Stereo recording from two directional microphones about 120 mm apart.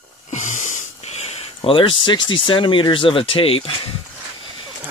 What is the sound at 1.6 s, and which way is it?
Speech, 45° left (ahead or behind).